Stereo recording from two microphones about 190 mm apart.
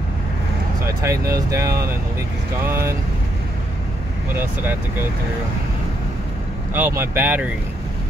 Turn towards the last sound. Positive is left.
turn(degrees=-10)  # may be behind; listen again after turning